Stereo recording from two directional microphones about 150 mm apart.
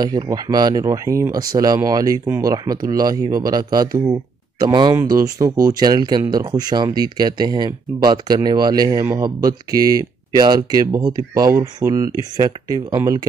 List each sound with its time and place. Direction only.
0.0 s speech: 25° right (ahead or behind)